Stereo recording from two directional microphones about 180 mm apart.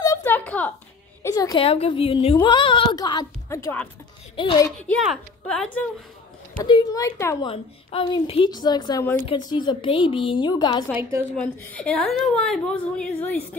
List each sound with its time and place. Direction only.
0.0 s a sound: 15° left (ahead or behind)
1.2 s a woman's voice: 20° left (ahead or behind)
1.7 s a woman's voice: 30° left (ahead or behind); by 3.9 s 10° left (ahead or behind)
4.4 s a woman's voice: 25° left (ahead or behind)
4.7 s a woman's voice: 5° left (ahead or behind)
6.6 s a woman's voice: 20° left (ahead or behind)
7.4 s a woman's voice: 30° left (ahead or behind)
10.9 s a woman's voice: 15° right (ahead or behind)
11.3 s a woman's voice: 5° left (ahead or behind)